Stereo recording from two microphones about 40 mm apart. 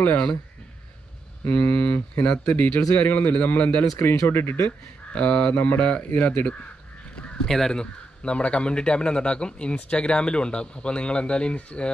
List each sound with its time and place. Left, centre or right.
1.4 s speech: left
4.0 s speech: left
4.6 s speech: left
7.4 s speech: centre; by 11.9 s left